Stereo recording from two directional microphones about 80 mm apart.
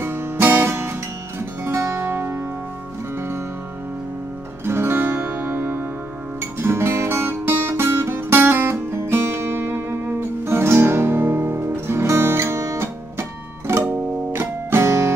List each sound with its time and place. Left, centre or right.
0.0 s music: right
4.6 s music: right